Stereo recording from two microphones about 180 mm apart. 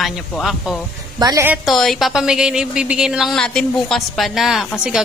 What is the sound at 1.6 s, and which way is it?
A woman's voice, centre (ahead or behind).